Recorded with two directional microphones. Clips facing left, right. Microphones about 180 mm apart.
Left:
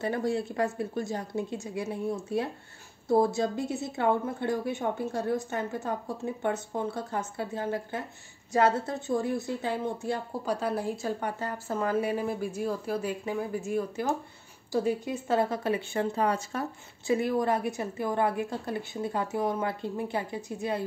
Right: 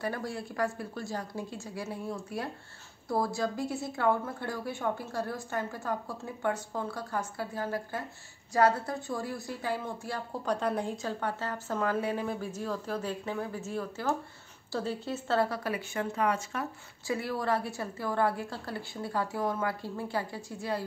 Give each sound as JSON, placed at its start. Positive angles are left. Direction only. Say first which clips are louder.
{"t": 0.0, "sound": "a woman's voice", "louder": "left 6 dB", "side_deg": 25}
{"t": 10.4, "sound": "a woman's voice", "louder": "right 1 dB", "side_deg": 5}
{"t": 17.1, "sound": "a woman's voice", "louder": "left 5 dB", "side_deg": 20}